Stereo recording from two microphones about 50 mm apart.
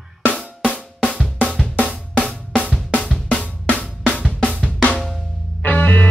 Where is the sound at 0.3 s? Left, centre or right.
Centre.